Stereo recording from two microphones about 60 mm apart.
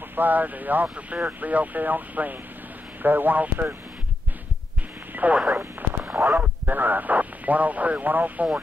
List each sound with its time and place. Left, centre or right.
0.1 s a man's voice: right
5.1 s radio: right
6.1 s speech: right
6.6 s speech: right